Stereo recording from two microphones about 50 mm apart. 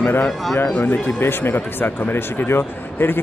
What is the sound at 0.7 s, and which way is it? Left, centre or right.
Speech, left.